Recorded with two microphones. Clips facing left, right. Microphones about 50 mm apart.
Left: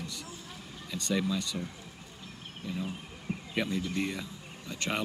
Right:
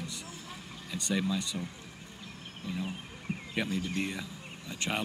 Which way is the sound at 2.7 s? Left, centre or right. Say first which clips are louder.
Even; centre.